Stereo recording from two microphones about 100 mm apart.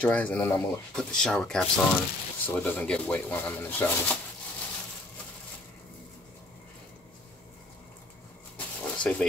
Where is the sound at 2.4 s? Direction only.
20° left (ahead or behind).